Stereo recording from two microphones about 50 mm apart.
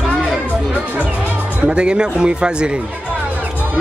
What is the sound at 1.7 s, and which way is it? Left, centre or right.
Speech, centre.